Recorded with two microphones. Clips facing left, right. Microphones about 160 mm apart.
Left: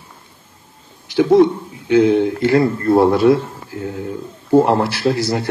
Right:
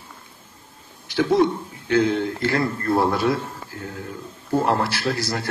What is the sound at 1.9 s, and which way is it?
A man's voice, 20° left (ahead or behind).